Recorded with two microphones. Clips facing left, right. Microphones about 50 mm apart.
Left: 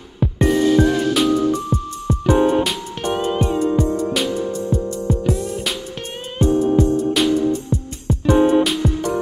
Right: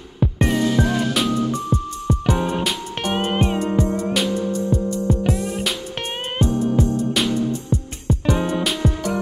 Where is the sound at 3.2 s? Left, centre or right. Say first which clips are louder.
Left 1 dB; right.